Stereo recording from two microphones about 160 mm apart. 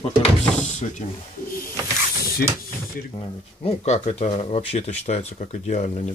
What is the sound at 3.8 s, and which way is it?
Speech, 40° left (ahead or behind).